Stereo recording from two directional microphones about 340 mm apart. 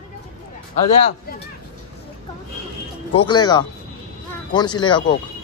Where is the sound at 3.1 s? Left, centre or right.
Centre.